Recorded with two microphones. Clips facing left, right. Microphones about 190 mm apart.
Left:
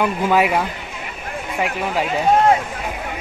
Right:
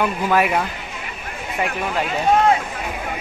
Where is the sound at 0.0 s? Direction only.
10° left (ahead or behind).